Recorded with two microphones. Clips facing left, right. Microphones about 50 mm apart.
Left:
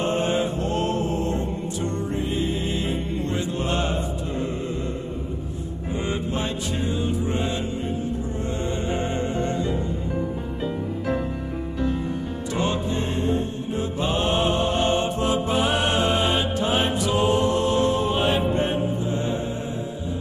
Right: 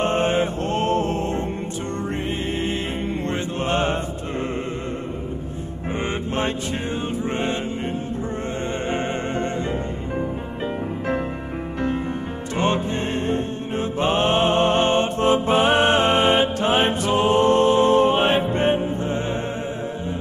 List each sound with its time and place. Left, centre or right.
0.0 s music: right
5.9 s music: right
12.5 s music: right